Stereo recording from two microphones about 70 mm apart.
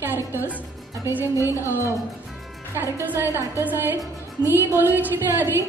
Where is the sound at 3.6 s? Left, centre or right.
Right.